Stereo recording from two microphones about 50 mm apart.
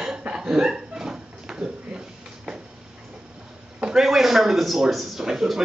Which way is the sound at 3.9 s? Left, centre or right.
Centre.